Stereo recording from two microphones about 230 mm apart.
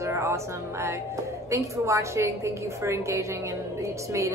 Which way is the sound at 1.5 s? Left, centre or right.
Centre.